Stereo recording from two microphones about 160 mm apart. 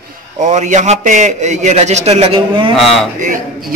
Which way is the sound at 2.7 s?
Centre (ahead or behind).